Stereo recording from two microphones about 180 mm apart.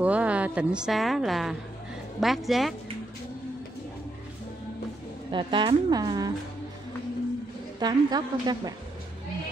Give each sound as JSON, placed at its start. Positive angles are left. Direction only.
{"t": 0.0, "sound": "a woman's voice", "side_deg": -5}
{"t": 5.3, "sound": "a woman's voice", "side_deg": -25}
{"t": 7.8, "sound": "a woman's voice", "side_deg": -20}